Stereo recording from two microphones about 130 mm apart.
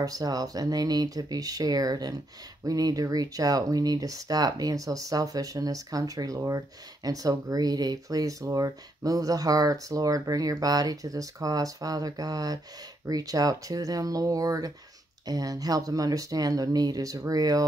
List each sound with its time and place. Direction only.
0.0 s speech: 30° right (ahead or behind)